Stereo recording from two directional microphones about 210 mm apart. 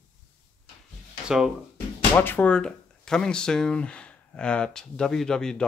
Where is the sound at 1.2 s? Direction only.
5° right (ahead or behind).